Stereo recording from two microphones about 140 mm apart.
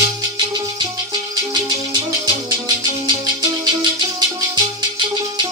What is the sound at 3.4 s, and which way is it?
Music, 30° right (ahead or behind).